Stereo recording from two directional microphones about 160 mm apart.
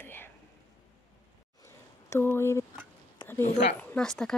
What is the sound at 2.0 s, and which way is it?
Speech, 15° left (ahead or behind).